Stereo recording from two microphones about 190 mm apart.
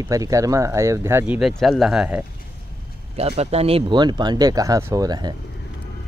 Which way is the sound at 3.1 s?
30° right (ahead or behind).